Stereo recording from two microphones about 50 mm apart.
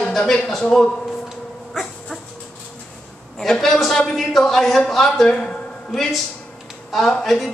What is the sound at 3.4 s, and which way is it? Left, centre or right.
A man's voice, centre.